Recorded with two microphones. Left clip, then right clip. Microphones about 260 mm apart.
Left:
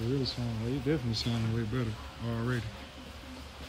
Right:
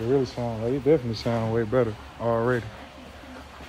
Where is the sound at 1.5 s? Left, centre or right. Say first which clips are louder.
Right 13 dB; right.